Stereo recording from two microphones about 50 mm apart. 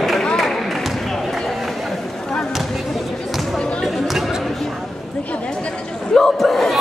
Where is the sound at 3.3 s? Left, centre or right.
Centre.